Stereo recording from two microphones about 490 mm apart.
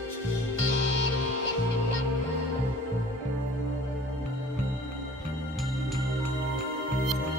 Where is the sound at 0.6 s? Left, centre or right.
Right.